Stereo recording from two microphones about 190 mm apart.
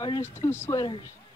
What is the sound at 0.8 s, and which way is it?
Speech, 25° left (ahead or behind).